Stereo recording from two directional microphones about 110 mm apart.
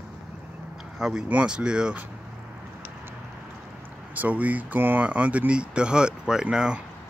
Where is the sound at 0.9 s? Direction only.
5° right (ahead or behind).